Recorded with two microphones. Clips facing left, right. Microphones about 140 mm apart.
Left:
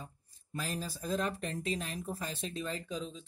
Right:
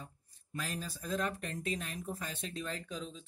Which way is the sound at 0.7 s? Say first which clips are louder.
Left 3 dB; 30° left (ahead or behind).